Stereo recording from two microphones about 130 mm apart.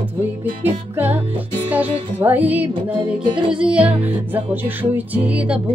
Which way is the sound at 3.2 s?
40° right (ahead or behind).